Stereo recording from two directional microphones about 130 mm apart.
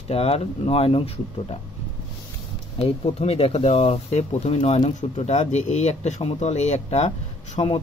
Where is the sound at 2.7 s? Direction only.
50° left (ahead or behind).